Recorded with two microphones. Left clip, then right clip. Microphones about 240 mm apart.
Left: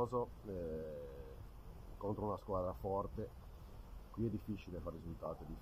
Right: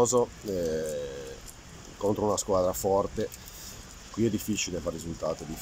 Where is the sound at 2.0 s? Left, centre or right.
Right.